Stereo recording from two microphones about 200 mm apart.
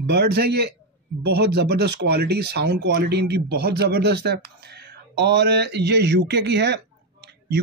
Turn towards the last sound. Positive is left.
turn(degrees=-55)  # may be behind; listen again after turning